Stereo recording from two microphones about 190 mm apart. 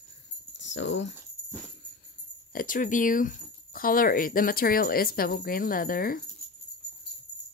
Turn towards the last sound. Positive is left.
turn(degrees=50)  # may be behind; listen again after turning